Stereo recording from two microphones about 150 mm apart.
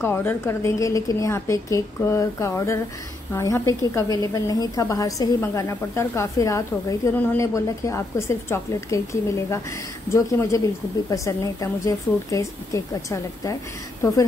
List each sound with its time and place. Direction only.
0.0 s a woman's voice: 15° left (ahead or behind)